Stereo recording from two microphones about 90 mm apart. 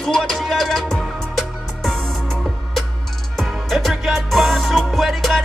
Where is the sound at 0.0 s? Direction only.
5° left (ahead or behind).